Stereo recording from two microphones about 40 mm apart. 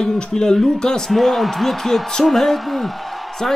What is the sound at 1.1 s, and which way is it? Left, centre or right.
Speech, centre.